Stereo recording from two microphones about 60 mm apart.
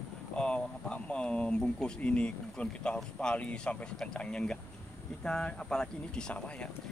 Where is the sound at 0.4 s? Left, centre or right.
Centre.